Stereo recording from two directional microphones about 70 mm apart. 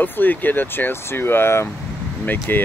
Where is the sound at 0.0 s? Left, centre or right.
Left.